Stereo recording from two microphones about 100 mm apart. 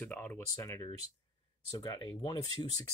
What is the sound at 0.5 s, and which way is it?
Speech, 30° left (ahead or behind).